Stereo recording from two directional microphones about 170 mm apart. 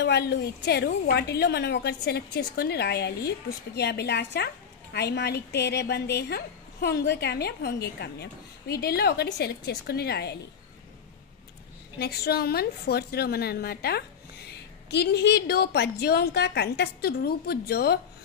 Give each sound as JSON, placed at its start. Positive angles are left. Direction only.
{"t": 0.0, "sound": "a woman's voice", "side_deg": 80}
{"t": 12.0, "sound": "a woman's voice", "side_deg": 70}